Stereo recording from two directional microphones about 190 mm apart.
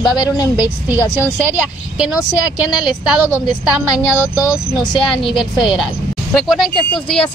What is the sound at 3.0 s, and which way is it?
A woman's voice, 5° right (ahead or behind).